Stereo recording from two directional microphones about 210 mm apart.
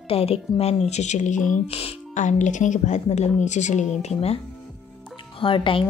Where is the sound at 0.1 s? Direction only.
30° left (ahead or behind).